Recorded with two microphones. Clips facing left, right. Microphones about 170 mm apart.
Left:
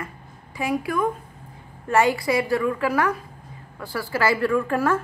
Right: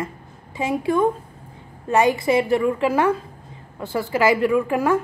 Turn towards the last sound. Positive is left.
turn(degrees=-15)  # may be behind; listen again after turning